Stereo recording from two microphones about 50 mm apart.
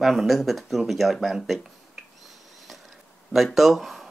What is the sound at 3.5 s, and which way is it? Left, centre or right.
Speech, centre.